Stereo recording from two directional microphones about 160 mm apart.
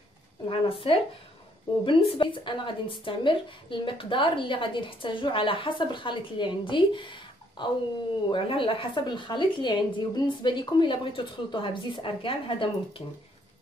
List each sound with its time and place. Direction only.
0.5 s a woman's voice: 35° left (ahead or behind)